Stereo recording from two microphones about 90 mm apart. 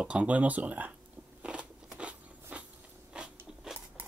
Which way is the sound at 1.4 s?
10° right (ahead or behind).